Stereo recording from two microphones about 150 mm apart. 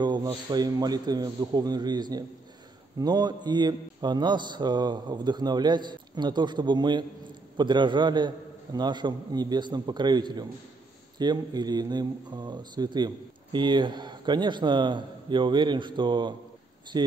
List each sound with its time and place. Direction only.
0.0 s a man's voice: 30° right (ahead or behind)